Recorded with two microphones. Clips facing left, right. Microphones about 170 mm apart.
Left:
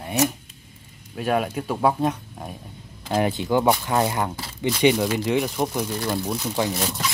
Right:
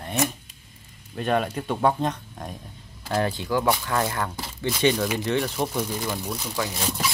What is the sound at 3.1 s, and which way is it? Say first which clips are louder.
Speech: left 3 dB; 15° left (ahead or behind).